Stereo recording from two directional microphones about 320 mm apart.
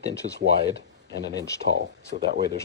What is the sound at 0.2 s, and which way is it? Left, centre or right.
Speech, right.